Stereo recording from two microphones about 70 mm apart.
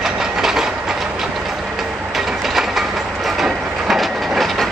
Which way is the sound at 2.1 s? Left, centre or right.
Centre.